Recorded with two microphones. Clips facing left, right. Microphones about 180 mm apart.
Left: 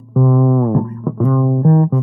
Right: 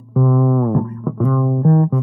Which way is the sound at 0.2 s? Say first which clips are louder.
Left 2 dB; 30° left (ahead or behind).